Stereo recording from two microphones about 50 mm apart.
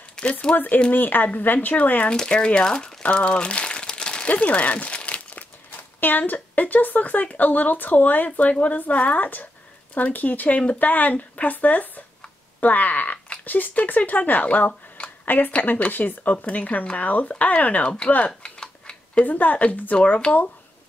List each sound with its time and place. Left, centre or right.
0.1 s speech: centre
0.9 s speech: left; by 2.9 s centre
3.0 s crumpling: left
5.7 s speech: left
18.6 s tick-tock: centre
19.2 s speech: left